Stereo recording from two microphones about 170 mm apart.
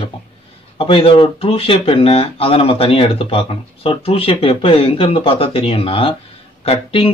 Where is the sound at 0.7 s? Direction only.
35° left (ahead or behind).